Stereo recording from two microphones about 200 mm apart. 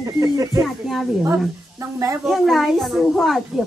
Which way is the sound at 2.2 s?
Centre (ahead or behind).